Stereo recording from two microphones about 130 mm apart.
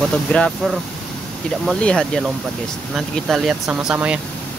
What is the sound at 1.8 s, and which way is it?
Speech, 5° left (ahead or behind).